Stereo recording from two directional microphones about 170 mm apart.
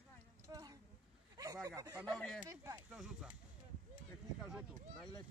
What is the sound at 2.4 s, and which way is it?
Speech, 20° right (ahead or behind).